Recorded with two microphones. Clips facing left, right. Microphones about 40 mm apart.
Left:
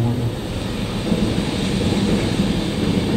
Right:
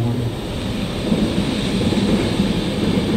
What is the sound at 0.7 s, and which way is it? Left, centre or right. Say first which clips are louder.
Vehicle: right 2 dB; right.